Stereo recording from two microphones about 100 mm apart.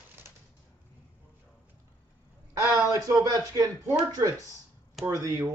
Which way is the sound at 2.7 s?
35° right (ahead or behind).